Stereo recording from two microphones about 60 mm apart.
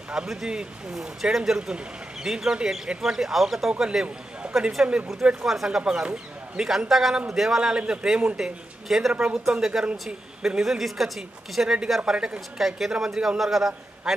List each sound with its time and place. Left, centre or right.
0.1 s a man's voice: centre
5.5 s a woman's voice: centre